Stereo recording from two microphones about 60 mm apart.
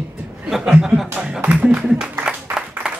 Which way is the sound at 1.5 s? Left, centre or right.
Right.